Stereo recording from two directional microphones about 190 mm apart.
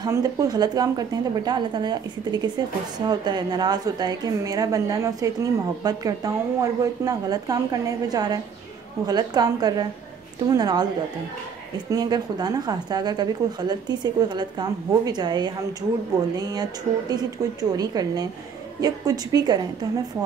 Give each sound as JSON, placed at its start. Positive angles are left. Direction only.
{"t": 0.0, "sound": "a woman's voice", "side_deg": -20}
{"t": 11.9, "sound": "a woman's voice", "side_deg": -20}